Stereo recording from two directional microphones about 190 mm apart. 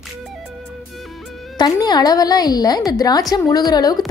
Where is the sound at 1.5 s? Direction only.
20° left (ahead or behind).